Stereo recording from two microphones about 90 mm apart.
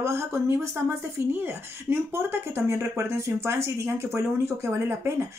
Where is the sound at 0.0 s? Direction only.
30° right (ahead or behind).